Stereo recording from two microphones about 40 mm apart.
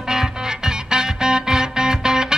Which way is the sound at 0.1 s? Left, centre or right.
Centre.